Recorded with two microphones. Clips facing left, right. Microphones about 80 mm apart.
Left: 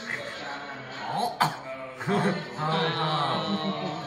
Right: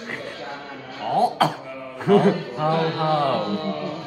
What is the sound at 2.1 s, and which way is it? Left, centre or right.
Speech, left.